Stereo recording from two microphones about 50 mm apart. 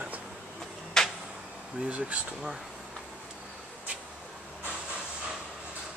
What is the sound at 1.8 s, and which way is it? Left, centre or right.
Speech, right.